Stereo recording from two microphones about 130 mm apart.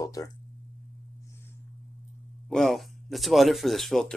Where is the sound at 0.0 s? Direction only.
25° left (ahead or behind).